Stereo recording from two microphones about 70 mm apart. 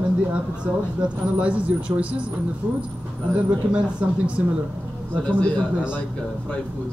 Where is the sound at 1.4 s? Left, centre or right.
Centre.